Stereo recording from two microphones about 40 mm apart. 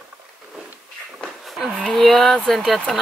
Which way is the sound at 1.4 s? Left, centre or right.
Centre.